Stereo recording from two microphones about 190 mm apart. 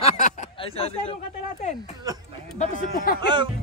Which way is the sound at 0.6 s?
30° left (ahead or behind).